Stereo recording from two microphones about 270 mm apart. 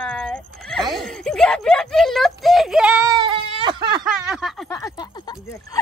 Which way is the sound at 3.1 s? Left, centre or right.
Centre.